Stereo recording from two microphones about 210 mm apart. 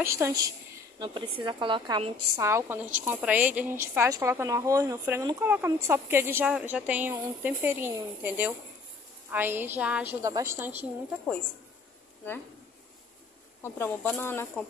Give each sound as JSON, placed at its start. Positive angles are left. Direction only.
{"t": 0.0, "sound": "a woman's voice", "side_deg": -15}
{"t": 2.4, "sound": "speech", "side_deg": -10}
{"t": 13.6, "sound": "speech", "side_deg": 10}